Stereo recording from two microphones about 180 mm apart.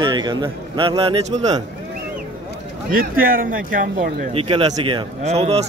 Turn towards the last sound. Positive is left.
turn(degrees=-35)  # may be behind; listen again after turning